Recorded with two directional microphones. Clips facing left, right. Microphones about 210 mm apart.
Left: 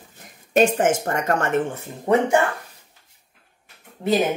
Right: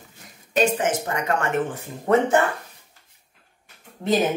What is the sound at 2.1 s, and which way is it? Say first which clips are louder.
Speech: even; 15° left (ahead or behind).